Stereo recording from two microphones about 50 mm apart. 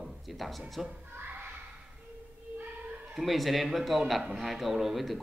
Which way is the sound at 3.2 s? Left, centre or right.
Centre.